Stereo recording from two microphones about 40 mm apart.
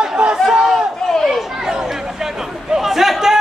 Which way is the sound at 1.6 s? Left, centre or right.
Centre.